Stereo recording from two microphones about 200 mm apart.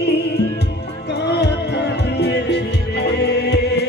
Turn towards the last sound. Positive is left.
turn(degrees=55)  # may be behind; listen again after turning